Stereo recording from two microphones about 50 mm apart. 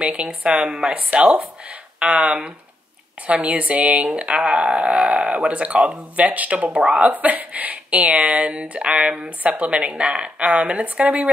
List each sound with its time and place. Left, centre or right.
0.0 s speech: right
6.7 s speech: centre
7.0 s speech: right